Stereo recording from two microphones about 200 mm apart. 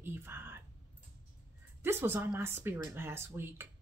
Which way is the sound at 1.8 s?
10° right (ahead or behind).